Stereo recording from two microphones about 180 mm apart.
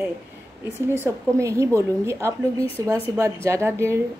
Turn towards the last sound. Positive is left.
turn(degrees=-15)  # may be behind; listen again after turning